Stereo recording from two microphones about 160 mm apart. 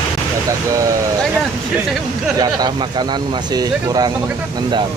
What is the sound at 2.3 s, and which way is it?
Speech, 25° right (ahead or behind).